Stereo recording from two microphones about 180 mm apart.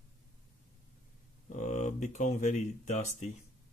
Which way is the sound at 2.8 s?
40° left (ahead or behind).